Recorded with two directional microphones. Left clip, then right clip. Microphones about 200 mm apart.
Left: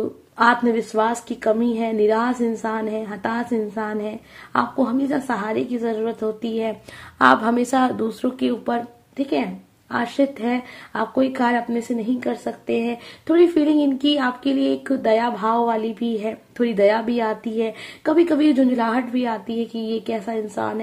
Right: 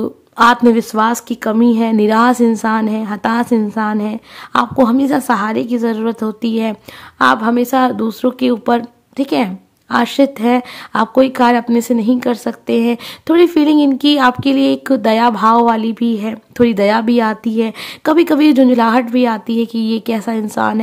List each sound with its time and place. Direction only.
0.4 s speech: 35° right (ahead or behind)
7.2 s speech: 20° right (ahead or behind); by 20.8 s 40° right (ahead or behind)